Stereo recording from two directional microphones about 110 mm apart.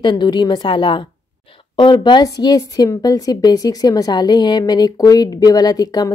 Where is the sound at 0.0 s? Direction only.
45° left (ahead or behind).